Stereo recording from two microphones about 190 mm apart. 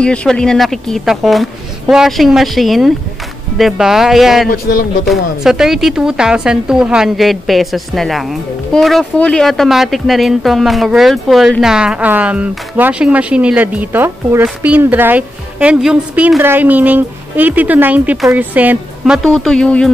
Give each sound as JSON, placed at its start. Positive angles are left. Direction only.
{"t": 0.0, "sound": "speech", "side_deg": 5}
{"t": 4.7, "sound": "speech", "side_deg": 50}
{"t": 5.0, "sound": "speech", "side_deg": 0}